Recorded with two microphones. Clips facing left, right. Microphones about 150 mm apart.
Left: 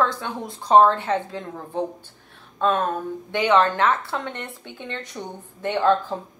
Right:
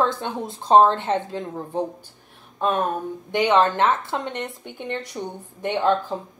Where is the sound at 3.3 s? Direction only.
15° right (ahead or behind).